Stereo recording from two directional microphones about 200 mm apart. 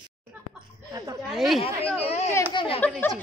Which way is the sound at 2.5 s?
25° left (ahead or behind).